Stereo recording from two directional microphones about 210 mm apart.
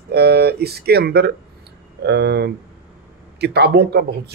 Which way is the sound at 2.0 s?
50° right (ahead or behind).